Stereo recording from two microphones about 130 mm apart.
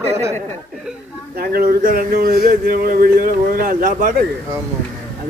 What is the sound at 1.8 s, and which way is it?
Speech, 90° right.